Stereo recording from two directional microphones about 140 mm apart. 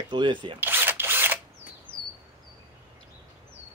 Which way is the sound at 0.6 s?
15° right (ahead or behind).